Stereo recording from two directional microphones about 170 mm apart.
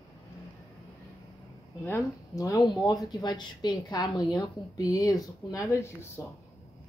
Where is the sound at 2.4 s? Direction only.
20° left (ahead or behind).